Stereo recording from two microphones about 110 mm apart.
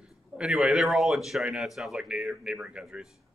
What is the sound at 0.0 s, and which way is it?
A man's voice, 5° right (ahead or behind).